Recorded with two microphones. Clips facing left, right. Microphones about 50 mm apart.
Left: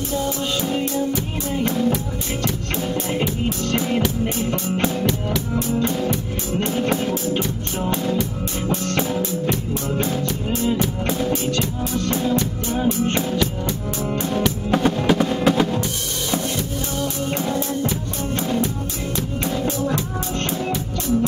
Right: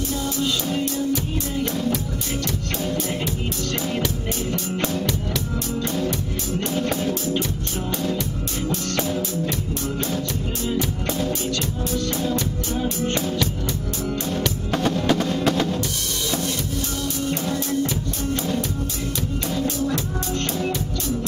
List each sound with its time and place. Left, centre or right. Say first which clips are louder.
0.2 s music: left 1 dB; left
2.4 s music: left 2 dB; left
4.8 s music: left 3 dB; centre
6.6 s music: left 3 dB; left
9.1 s music: left 3 dB; centre
14.0 s music: left 4 dB; left
17.0 s music: left 3 dB; left
19.5 s music: left 1 dB; left